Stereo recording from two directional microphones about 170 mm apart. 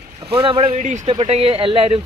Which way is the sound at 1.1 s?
35° right (ahead or behind).